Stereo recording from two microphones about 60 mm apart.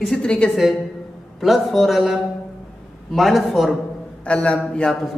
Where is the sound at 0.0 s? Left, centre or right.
Centre.